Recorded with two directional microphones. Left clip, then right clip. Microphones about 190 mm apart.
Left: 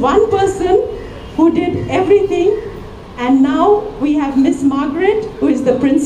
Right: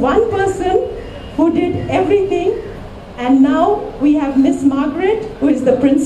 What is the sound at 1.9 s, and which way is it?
Speech, 20° left (ahead or behind).